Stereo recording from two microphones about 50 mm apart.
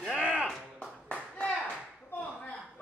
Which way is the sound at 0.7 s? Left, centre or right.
Left.